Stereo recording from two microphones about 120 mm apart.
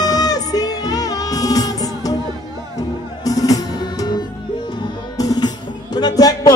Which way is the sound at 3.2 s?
30° left (ahead or behind).